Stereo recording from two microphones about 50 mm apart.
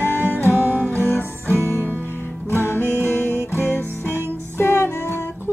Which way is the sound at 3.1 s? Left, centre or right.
Left.